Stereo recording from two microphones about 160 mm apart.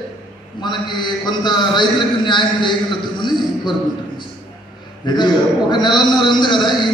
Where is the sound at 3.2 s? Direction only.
30° left (ahead or behind).